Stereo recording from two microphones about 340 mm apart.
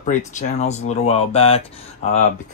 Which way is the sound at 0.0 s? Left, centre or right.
Left.